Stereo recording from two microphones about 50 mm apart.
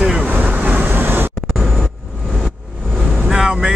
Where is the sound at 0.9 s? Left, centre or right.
Right.